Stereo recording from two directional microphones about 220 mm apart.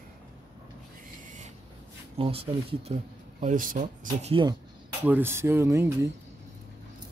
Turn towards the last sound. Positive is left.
turn(degrees=-10)  # may be behind; listen again after turning